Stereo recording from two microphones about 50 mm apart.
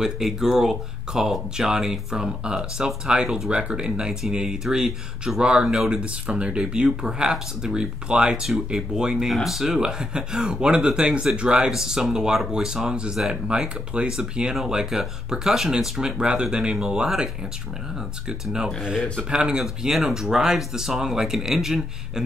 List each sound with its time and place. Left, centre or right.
0.0 s speech: centre
12.9 s speech: right
14.5 s speech: centre
16.2 s speech: centre
19.3 s speech: centre